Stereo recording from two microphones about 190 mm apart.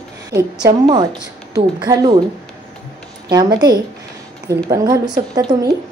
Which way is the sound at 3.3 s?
20° right (ahead or behind).